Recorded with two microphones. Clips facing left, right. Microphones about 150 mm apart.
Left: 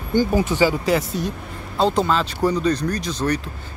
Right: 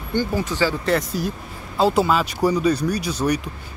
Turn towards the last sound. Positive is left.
turn(degrees=-10)  # may be behind; listen again after turning